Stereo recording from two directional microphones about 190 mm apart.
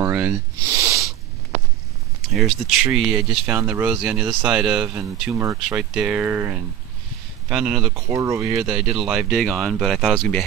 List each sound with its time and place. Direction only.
0.0 s snort: 10° right (ahead or behind)
2.2 s speech: centre (ahead or behind)
7.9 s speech: 15° right (ahead or behind)
8.5 s speech: 5° right (ahead or behind)